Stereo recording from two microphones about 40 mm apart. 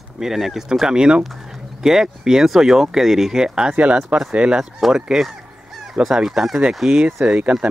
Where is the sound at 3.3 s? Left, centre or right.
Centre.